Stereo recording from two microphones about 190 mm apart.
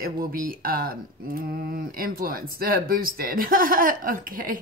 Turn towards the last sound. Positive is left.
turn(degrees=-45)  # may be behind; listen again after turning